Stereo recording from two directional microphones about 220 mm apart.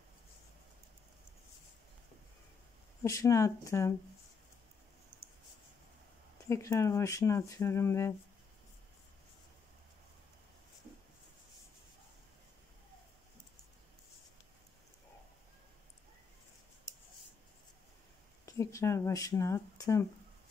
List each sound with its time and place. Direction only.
3.0 s speech: 15° left (ahead or behind)
6.5 s speech: 15° left (ahead or behind)
18.4 s speech: 15° left (ahead or behind)